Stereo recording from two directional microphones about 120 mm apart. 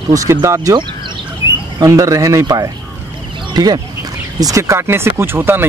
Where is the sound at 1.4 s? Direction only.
45° left (ahead or behind).